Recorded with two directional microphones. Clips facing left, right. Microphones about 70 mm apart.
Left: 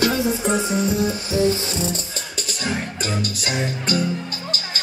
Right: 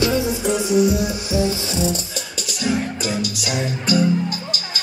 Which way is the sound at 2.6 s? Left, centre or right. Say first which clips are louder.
Right 4 dB; left.